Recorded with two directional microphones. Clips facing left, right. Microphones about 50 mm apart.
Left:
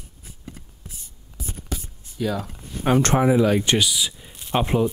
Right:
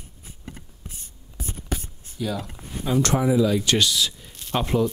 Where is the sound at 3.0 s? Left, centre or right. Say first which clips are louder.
Left 1 dB; left.